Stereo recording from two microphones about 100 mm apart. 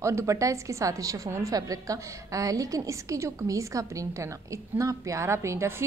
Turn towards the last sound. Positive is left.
turn(degrees=-25)  # may be behind; listen again after turning